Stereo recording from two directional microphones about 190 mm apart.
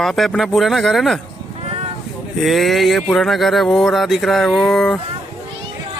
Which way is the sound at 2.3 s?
Centre (ahead or behind).